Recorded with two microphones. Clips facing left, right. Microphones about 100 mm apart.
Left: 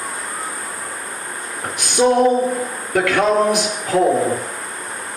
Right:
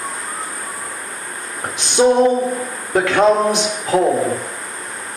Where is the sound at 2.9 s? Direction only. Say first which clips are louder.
Right 2 dB; 25° right (ahead or behind).